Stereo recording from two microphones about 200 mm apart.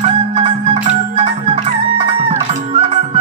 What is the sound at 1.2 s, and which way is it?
Music, 30° right (ahead or behind).